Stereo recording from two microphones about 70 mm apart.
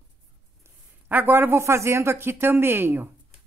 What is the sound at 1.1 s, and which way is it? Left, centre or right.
Speech, right.